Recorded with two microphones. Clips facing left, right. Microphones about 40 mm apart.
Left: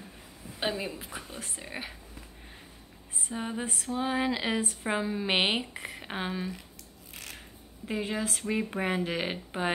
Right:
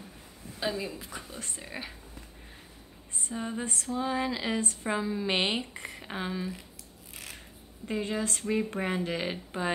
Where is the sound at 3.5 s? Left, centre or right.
Centre.